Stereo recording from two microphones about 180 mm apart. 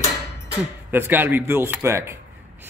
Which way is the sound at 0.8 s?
10° right (ahead or behind).